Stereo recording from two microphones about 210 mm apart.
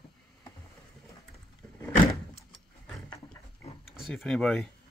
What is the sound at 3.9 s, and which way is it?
Speech, centre (ahead or behind).